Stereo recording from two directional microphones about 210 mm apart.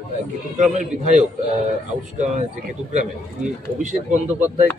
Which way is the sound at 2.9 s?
35° right (ahead or behind).